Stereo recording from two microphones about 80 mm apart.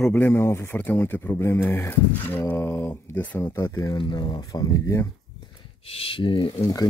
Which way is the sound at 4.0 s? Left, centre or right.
Left.